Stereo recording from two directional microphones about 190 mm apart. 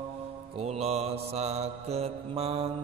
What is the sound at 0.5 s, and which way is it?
Mantra, 35° right (ahead or behind).